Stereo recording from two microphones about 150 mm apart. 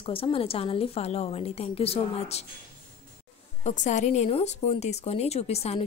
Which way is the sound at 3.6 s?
50° left (ahead or behind).